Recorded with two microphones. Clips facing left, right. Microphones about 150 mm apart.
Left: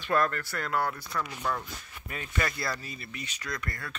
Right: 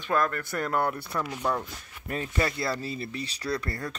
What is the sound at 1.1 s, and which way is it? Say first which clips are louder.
Speech: right 3 dB; 25° right (ahead or behind).